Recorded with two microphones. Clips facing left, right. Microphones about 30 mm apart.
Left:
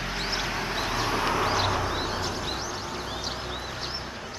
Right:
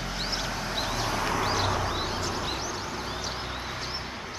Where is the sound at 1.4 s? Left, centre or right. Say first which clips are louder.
Left 2 dB; centre.